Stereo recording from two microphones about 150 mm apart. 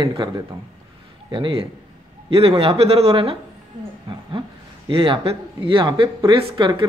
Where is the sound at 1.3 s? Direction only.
35° right (ahead or behind).